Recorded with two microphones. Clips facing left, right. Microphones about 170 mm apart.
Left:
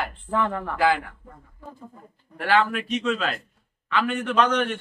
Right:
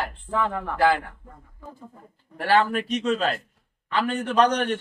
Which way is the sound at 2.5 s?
40° right (ahead or behind).